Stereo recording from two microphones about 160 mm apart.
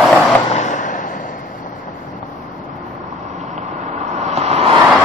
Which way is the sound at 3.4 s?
45° right (ahead or behind).